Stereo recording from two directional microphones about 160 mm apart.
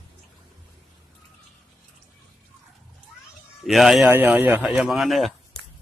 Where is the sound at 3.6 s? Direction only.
Centre (ahead or behind).